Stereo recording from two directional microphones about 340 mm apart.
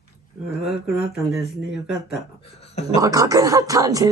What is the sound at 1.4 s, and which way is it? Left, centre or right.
Speech, left.